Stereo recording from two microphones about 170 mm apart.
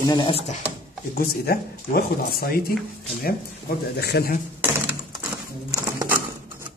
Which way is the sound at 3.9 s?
75° left (ahead or behind).